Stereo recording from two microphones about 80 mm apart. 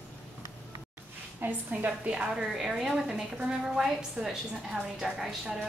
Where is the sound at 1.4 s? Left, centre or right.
Right.